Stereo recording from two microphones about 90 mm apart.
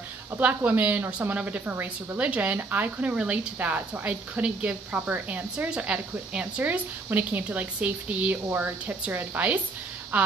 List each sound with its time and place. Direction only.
0.7 s a woman's voice: 15° right (ahead or behind)